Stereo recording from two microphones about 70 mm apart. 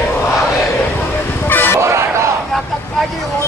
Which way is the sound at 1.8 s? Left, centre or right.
Right.